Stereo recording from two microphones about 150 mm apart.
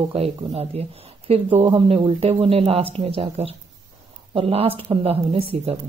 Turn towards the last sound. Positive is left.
turn(degrees=-40)  # may be behind; listen again after turning